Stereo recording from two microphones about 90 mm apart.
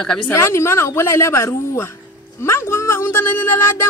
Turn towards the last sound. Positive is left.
turn(degrees=30)  # may be behind; listen again after turning